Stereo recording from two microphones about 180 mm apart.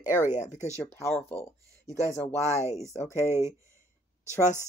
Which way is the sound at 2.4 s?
15° right (ahead or behind).